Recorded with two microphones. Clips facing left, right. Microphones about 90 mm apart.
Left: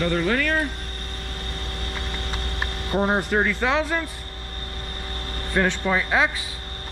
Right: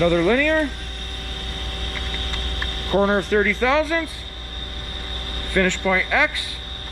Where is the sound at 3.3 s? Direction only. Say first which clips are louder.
Right 4 dB; 20° left (ahead or behind).